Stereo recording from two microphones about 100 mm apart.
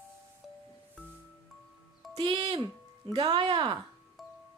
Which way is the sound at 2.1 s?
55° right (ahead or behind).